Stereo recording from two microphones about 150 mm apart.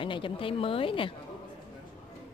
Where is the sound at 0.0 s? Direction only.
35° left (ahead or behind).